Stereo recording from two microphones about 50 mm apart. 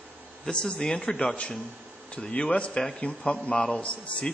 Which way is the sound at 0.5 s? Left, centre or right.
Centre.